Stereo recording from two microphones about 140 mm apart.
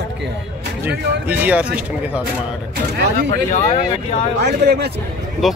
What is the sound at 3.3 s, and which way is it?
Speech, 55° left (ahead or behind).